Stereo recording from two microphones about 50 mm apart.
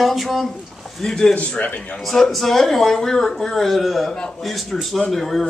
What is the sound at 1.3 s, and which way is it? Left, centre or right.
Speech, left.